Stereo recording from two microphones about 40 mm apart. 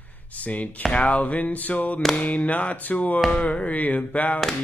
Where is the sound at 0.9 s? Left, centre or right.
Left.